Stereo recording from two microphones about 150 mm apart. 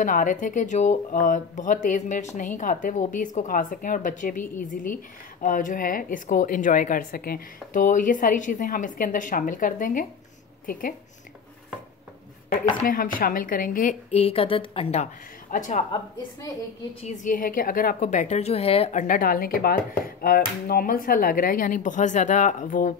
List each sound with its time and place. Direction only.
0.0 s a woman's voice: 60° left (ahead or behind)
12.8 s a woman's voice: 65° left (ahead or behind)
14.1 s a woman's voice: 40° left (ahead or behind)
15.5 s a woman's voice: 60° left (ahead or behind)
17.0 s a woman's voice: 55° left (ahead or behind)